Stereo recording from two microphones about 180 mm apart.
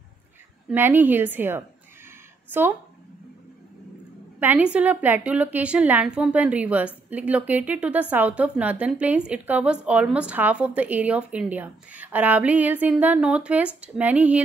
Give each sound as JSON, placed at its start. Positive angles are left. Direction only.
{"t": 0.7, "sound": "a woman's voice", "side_deg": -10}
{"t": 4.4, "sound": "a woman's voice", "side_deg": -10}